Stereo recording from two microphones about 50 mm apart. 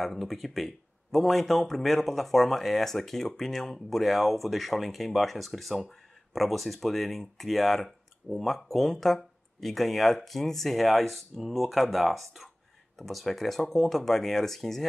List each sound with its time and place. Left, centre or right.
0.0 s speech: centre